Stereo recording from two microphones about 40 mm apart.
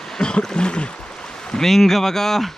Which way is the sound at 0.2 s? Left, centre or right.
Left.